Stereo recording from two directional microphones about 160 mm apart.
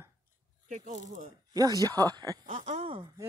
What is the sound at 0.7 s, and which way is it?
Speech, 50° right (ahead or behind).